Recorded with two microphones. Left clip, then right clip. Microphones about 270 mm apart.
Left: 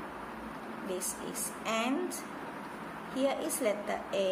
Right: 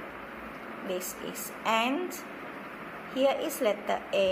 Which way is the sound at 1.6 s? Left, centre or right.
Centre.